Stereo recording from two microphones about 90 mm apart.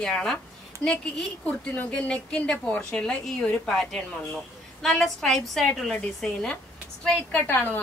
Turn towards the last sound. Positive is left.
turn(degrees=20)  # may be behind; listen again after turning